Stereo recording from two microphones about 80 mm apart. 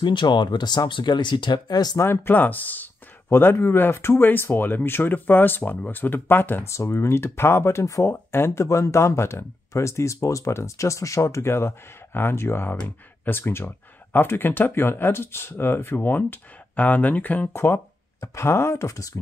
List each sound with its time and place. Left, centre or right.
0.0 s speech: left
2.0 s speech: left
17.5 s speech: left